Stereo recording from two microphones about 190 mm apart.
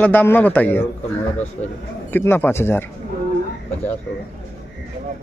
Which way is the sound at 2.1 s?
10° left (ahead or behind).